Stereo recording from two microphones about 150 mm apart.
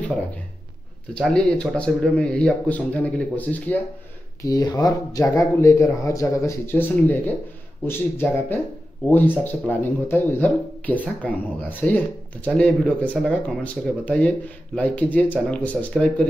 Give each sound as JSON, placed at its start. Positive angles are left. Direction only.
{"t": 1.1, "sound": "speech", "side_deg": 5}
{"t": 4.4, "sound": "speech", "side_deg": 25}